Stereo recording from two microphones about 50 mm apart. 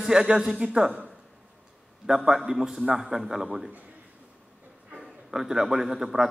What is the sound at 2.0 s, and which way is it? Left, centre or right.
A man's voice, centre.